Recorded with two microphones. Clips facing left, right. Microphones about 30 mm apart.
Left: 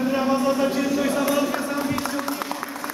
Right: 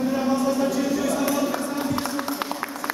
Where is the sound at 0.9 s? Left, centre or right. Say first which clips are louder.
Left 2 dB; left.